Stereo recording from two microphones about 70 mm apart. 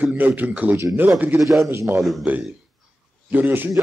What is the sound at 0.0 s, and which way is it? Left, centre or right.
Speech, right.